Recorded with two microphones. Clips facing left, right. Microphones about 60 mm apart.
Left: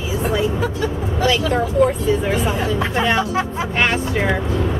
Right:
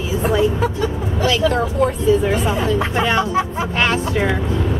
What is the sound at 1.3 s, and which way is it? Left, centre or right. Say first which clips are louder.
Speech: right 2 dB; centre.